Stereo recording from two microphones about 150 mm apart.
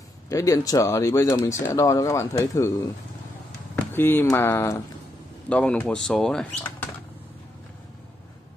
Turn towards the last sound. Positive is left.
turn(degrees=5)  # may be behind; listen again after turning